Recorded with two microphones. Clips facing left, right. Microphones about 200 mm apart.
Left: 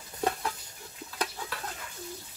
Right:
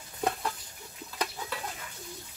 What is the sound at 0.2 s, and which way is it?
Stir, centre (ahead or behind).